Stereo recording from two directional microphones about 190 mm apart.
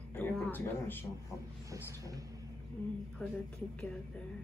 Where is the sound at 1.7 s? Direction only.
15° right (ahead or behind).